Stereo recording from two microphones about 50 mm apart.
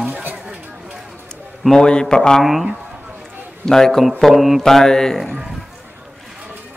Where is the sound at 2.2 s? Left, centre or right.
Centre.